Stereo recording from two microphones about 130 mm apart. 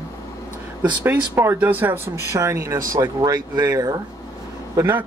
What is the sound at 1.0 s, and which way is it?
Speech, 15° right (ahead or behind).